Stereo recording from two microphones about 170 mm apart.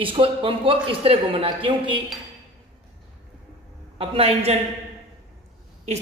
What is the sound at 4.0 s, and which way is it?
Speech, 35° right (ahead or behind).